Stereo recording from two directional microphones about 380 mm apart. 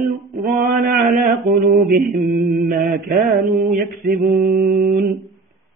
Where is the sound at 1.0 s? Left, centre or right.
Right.